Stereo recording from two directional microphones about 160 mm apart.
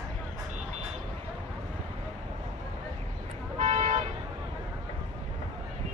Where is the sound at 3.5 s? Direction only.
35° right (ahead or behind).